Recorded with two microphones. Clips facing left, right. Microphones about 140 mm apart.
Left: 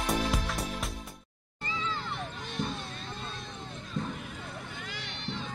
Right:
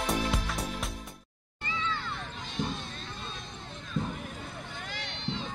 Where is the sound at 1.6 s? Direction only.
35° left (ahead or behind).